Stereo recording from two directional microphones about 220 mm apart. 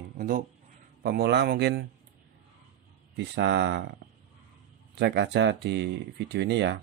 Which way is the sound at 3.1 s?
50° right (ahead or behind).